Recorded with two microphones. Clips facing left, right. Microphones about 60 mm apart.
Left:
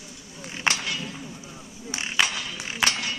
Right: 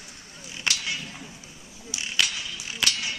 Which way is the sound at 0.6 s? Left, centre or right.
Left.